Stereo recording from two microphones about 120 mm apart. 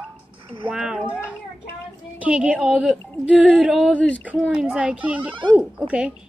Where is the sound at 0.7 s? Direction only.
5° right (ahead or behind).